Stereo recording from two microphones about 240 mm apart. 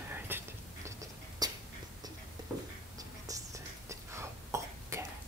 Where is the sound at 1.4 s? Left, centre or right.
Centre.